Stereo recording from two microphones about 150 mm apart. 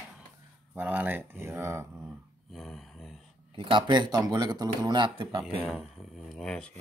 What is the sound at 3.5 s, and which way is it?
Speech, 35° right (ahead or behind).